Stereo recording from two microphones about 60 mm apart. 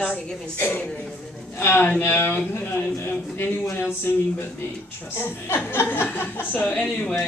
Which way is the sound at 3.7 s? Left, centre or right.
Left.